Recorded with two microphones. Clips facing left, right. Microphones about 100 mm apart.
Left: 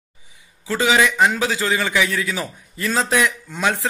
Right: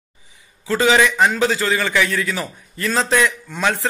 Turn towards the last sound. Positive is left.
turn(degrees=15)  # may be behind; listen again after turning